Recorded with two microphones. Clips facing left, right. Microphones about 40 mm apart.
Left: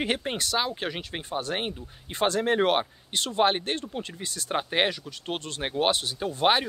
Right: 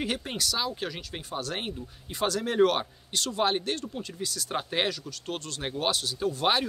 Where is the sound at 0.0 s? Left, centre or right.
Left.